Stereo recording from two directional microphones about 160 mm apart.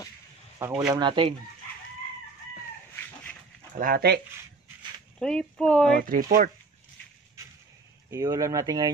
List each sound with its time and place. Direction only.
0.6 s speech: 15° right (ahead or behind)
0.9 s speech: 30° right (ahead or behind)
3.7 s speech: 65° right (ahead or behind)
5.2 s speech: 5° left (ahead or behind)
5.9 s speech: 60° right (ahead or behind)
8.1 s speech: 20° right (ahead or behind)